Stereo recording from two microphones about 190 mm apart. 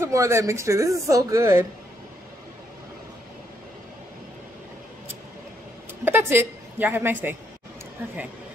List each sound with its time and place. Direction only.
0.0 s speech: 15° right (ahead or behind)
6.0 s a woman's voice: 15° right (ahead or behind)